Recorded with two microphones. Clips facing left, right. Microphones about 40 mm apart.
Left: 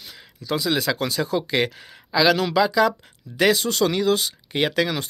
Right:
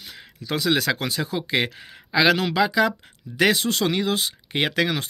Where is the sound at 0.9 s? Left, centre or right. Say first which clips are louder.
Left 2 dB; right.